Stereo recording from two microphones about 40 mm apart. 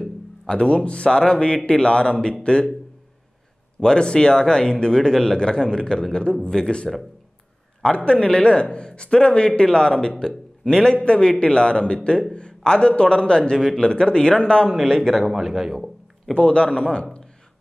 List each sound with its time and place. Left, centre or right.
0.5 s a man's voice: left
3.8 s a man's voice: left
6.9 s a man's voice: centre
7.8 s a man's voice: left
15.0 s a man's voice: centre
16.3 s a man's voice: left